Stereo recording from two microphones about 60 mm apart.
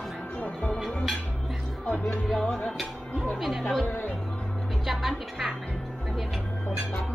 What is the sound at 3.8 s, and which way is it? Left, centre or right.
Speech, left.